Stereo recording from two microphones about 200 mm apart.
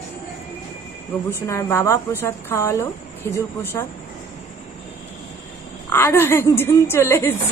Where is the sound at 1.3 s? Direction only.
15° left (ahead or behind).